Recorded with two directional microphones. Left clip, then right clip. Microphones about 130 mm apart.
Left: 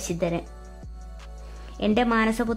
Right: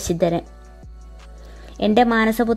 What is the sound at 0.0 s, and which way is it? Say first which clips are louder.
Speech: right 7 dB; 35° right (ahead or behind).